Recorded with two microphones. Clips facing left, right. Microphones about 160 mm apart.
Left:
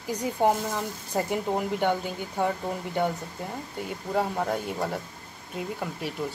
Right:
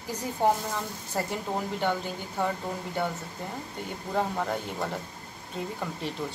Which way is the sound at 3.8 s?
5° left (ahead or behind).